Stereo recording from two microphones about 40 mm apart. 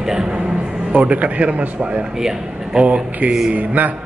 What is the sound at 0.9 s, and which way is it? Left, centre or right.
Speech, right.